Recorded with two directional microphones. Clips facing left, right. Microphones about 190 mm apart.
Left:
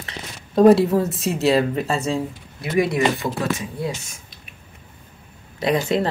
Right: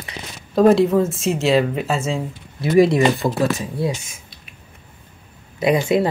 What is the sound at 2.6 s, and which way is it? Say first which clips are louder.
Speech: right 5 dB; 30° right (ahead or behind).